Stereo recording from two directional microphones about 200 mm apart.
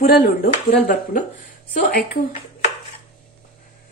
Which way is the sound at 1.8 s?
45° left (ahead or behind).